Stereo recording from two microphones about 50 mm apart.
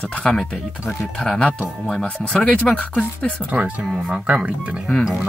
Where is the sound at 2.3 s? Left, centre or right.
Left.